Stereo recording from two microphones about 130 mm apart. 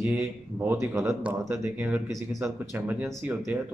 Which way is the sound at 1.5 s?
20° right (ahead or behind).